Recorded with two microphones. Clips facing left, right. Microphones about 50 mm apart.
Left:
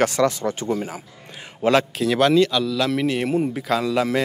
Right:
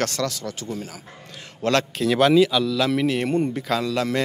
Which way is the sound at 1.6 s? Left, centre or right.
Centre.